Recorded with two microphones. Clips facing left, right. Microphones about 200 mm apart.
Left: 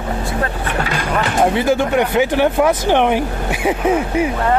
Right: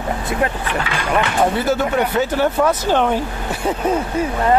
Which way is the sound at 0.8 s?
40° left (ahead or behind).